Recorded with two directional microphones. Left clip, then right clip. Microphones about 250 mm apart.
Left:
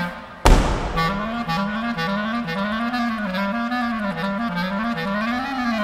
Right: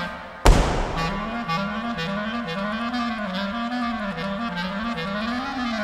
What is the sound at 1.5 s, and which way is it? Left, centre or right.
Clarinet, centre.